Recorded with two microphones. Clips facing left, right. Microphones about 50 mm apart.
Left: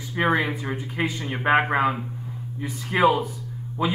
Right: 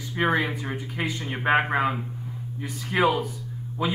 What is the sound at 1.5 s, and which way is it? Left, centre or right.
Speech, centre.